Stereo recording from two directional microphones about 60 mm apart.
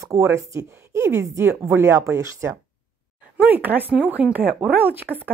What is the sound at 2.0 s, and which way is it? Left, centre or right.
Speech, right.